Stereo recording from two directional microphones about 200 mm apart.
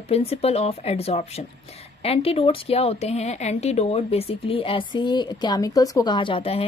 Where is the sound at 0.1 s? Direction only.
30° left (ahead or behind).